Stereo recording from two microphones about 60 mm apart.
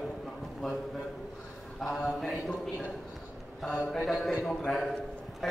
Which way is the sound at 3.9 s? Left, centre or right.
Centre.